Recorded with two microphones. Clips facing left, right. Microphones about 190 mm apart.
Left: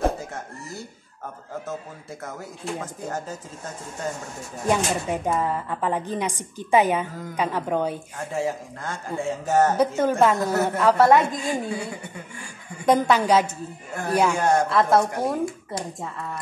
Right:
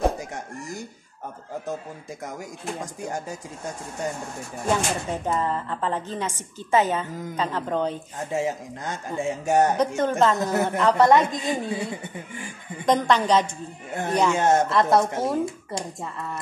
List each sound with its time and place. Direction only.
0.2 s a sound: 15° right (ahead or behind)
2.2 s speech: 15° right (ahead or behind)
4.6 s a woman's voice: 15° left (ahead or behind)
8.2 s speech: 20° right (ahead or behind)
9.9 s a woman's voice: 10° left (ahead or behind)
10.3 s speech: 20° right (ahead or behind)
10.8 s a woman's voice: 5° left (ahead or behind)
11.3 s speech: 20° right (ahead or behind)
12.8 s a woman's voice: 10° left (ahead or behind)
14.3 s speech: 20° right (ahead or behind)
14.7 s a woman's voice: centre (ahead or behind)
15.0 s speech: 25° right (ahead or behind)